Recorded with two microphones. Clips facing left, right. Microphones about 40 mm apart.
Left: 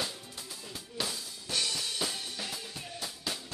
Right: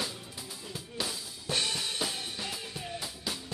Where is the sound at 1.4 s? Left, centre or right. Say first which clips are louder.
Right 2 dB; right.